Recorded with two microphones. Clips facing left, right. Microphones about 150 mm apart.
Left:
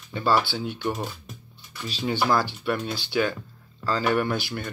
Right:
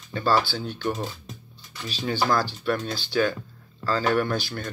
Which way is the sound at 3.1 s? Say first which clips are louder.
Right 2 dB; 20° left (ahead or behind).